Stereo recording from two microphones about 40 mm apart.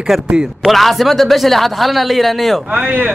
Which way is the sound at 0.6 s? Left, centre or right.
Centre.